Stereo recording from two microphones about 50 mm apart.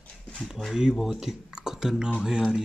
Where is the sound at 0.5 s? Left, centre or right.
Centre.